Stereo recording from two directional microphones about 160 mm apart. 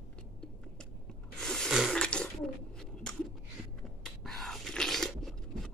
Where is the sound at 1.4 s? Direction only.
5° left (ahead or behind).